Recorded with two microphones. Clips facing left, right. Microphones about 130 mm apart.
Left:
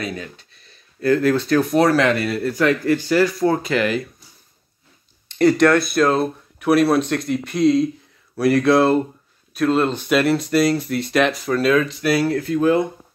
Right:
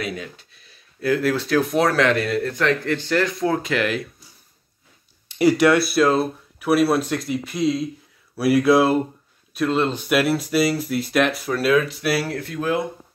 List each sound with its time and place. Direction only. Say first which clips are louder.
0.0 s speech: left 1 dB; 5° right (ahead or behind)
5.3 s speech: left 2 dB; 10° right (ahead or behind)